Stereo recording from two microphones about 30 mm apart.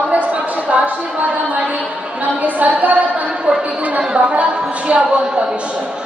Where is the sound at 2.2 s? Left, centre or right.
Right.